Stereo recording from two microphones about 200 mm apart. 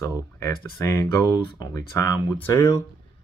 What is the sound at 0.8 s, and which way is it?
Speech, 15° left (ahead or behind).